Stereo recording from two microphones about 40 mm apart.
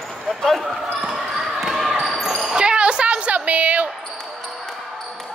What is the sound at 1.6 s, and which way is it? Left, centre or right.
Basketball bounce, centre.